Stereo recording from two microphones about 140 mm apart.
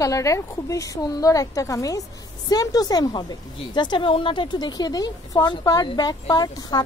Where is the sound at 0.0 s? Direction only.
25° left (ahead or behind).